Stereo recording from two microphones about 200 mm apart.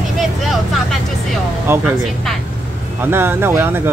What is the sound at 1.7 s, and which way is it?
Speech, 15° right (ahead or behind).